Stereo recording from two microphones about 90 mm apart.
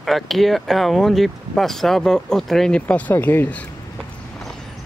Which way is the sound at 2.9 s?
20° left (ahead or behind).